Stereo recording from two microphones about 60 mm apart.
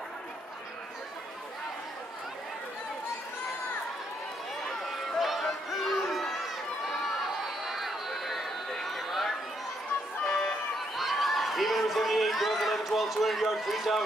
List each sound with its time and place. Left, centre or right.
4.6 s run: centre
10.2 s music: centre
11.0 s a sound: centre